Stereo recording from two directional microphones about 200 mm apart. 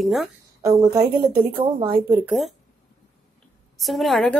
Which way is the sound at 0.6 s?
20° right (ahead or behind).